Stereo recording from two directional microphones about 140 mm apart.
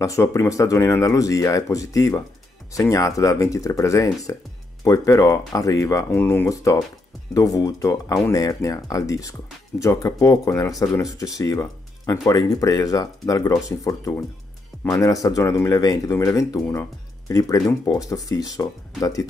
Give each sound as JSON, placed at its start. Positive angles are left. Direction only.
{"t": 0.0, "sound": "speech", "side_deg": 20}